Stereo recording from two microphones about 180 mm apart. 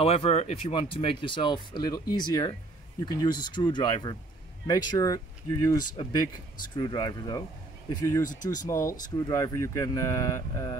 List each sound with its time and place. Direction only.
0.0 s speech: 35° left (ahead or behind); by 10.8 s 20° left (ahead or behind)